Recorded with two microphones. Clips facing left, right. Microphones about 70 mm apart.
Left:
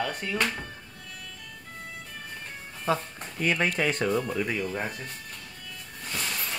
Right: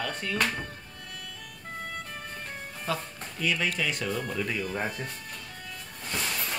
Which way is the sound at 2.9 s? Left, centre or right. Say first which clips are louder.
Left 5 dB; left.